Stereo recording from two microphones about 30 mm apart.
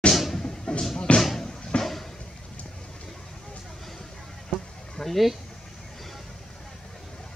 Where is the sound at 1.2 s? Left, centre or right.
Centre.